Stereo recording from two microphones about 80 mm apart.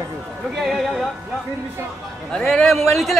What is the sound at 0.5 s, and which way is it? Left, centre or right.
Speech, centre.